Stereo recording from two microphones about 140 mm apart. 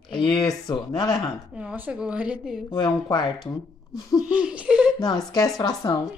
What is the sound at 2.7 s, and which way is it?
Speech, 35° left (ahead or behind).